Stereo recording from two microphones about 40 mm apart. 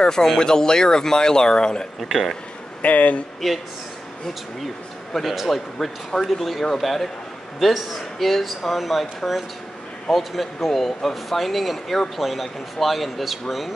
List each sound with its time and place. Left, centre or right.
0.0 s speech: centre
2.0 s speech: centre
2.8 s speech: left
3.3 s speech: centre
5.1 s speech: centre